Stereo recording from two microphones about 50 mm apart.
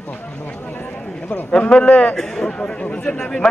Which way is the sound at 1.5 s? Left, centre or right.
Left.